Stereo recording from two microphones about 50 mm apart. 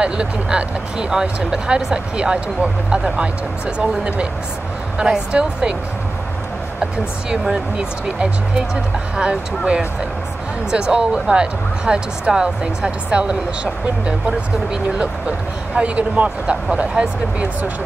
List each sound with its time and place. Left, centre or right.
0.0 s speech: right
7.7 s speech: right
10.7 s speech: centre
14.7 s speech: right